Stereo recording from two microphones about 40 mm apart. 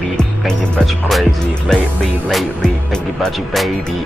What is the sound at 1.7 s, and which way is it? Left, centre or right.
Speech, centre.